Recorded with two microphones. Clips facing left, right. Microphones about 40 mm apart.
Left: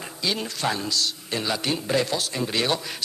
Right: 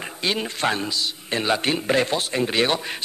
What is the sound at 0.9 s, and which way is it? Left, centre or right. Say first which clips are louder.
Speech: even; right.